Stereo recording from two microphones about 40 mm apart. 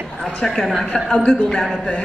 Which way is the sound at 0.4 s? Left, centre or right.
Centre.